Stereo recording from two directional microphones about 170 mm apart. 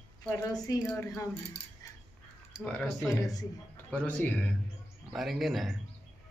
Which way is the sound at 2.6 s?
5° left (ahead or behind).